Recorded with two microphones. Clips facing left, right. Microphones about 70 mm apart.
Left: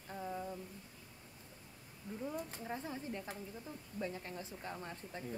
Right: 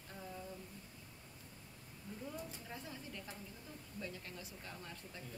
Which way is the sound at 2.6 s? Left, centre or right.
Left.